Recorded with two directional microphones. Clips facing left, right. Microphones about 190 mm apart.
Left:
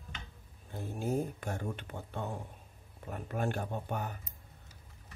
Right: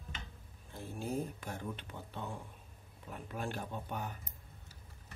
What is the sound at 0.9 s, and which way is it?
Speech, 50° left (ahead or behind).